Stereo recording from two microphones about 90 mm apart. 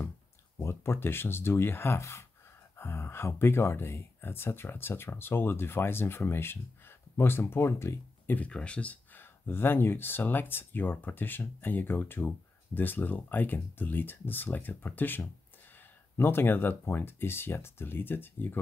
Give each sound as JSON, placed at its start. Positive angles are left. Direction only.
{"t": 0.6, "sound": "speech", "side_deg": 30}
{"t": 8.4, "sound": "speech", "side_deg": 15}